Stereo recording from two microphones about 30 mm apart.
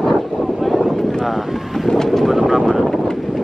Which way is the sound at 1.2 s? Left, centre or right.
Centre.